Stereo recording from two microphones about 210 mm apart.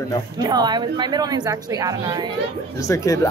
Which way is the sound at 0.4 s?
20° right (ahead or behind).